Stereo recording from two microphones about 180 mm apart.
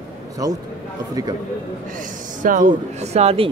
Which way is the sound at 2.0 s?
45° right (ahead or behind).